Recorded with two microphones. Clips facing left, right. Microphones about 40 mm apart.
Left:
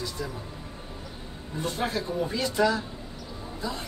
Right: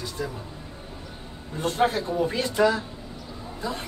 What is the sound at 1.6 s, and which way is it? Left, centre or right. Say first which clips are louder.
Speech: right 6 dB; right.